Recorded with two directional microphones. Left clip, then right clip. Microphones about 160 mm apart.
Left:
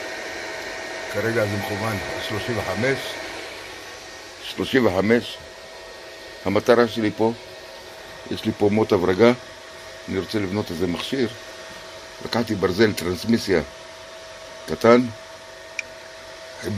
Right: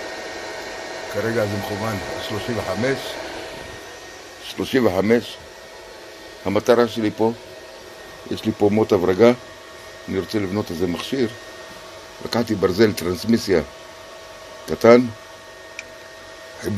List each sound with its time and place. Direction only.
0.0 s speech: 10° right (ahead or behind)
3.2 s a sound: 30° right (ahead or behind)
4.5 s speech: 5° right (ahead or behind)
6.4 s speech: centre (ahead or behind)
8.3 s speech: 10° right (ahead or behind)
10.1 s speech: 15° right (ahead or behind)
14.7 s speech: 20° right (ahead or behind)